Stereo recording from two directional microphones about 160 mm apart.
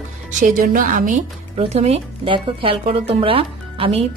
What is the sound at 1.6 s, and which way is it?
Speech, 40° right (ahead or behind).